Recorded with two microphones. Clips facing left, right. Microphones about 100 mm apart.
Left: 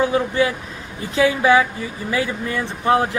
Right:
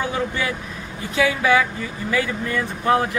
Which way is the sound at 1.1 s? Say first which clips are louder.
Left 3 dB; 30° left (ahead or behind).